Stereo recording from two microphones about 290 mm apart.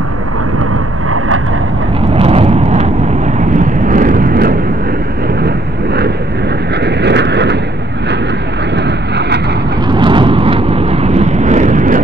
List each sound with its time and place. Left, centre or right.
2.1 s vehicle: right
3.9 s vehicle: right
6.8 s vehicle: right
8.7 s boat: right
9.8 s vehicle: centre